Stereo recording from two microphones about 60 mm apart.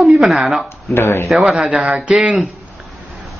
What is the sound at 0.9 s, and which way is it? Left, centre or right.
Speech, left.